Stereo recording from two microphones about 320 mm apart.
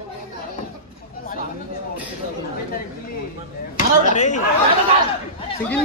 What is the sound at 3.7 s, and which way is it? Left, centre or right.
Speech, left.